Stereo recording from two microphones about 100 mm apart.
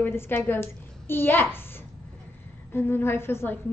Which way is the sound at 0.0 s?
25° left (ahead or behind).